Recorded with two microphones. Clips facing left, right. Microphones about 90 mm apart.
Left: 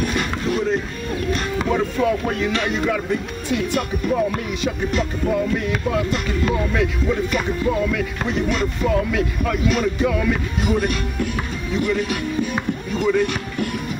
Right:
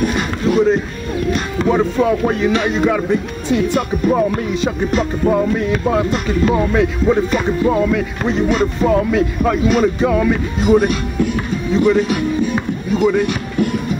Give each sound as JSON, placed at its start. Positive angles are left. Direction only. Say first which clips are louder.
{"t": 0.0, "sound": "a sound", "louder": "right 5 dB", "side_deg": -20}
{"t": 1.7, "sound": "music", "louder": "right 6 dB", "side_deg": -25}
{"t": 4.5, "sound": "speech", "louder": "right 5 dB", "side_deg": -35}
{"t": 10.7, "sound": "music", "louder": "right 9 dB", "side_deg": -25}
{"t": 12.9, "sound": "speech", "louder": "right 4 dB", "side_deg": -15}